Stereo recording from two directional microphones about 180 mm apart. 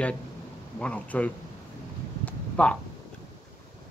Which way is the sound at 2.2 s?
5° left (ahead or behind).